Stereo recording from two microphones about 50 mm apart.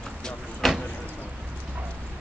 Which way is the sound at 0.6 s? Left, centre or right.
Centre.